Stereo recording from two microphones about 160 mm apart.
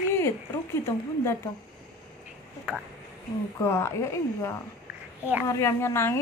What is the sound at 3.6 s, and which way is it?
A woman's voice, 15° left (ahead or behind).